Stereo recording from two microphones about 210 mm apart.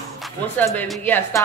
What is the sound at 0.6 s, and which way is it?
Speech, 10° left (ahead or behind).